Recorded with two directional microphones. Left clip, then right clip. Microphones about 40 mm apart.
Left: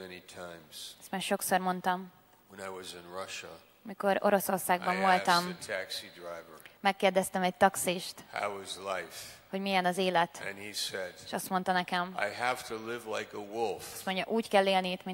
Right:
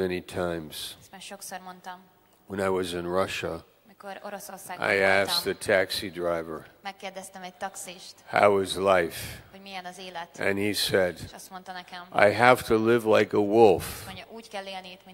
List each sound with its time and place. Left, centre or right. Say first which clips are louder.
0.0 s speech: right 16 dB; right
1.1 s a woman's voice: left 10 dB; left
2.5 s speech: right 15 dB; centre
4.0 s a woman's voice: left 11 dB; left
4.8 s speech: right 7 dB; right
6.5 s a woman's voice: left 6 dB; left
8.3 s speech: right 16 dB; right
9.5 s a woman's voice: left 10 dB; left
10.4 s speech: right 11 dB; right
11.3 s a woman's voice: left 10 dB; left
12.2 s speech: right 13 dB; right
13.3 s speech: right 16 dB; right
14.0 s a woman's voice: left 10 dB; left